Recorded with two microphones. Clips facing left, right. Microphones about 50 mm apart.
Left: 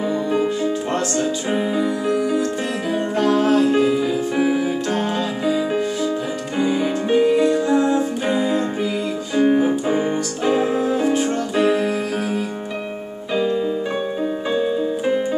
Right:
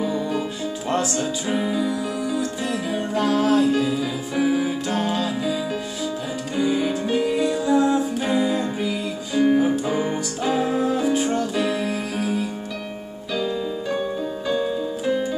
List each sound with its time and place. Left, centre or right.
0.0 s music: left
1.5 s music: left
6.6 s music: centre
7.3 s music: left
11.1 s music: centre
11.5 s keyboard: left
14.5 s music: left